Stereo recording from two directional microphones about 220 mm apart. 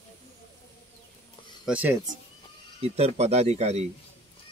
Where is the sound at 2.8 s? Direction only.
30° right (ahead or behind).